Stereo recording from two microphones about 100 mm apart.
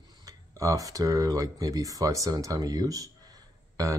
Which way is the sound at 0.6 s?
35° right (ahead or behind).